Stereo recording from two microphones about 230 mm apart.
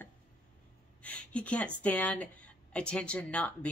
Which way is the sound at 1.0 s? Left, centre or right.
Centre.